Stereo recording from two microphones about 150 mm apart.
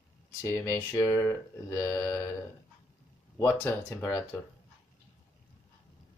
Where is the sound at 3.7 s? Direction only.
15° left (ahead or behind).